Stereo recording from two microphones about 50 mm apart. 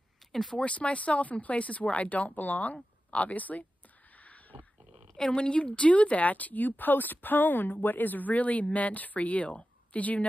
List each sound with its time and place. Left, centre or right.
0.3 s speech: centre
0.6 s speech: left
4.2 s a sound: left
5.1 s speech: centre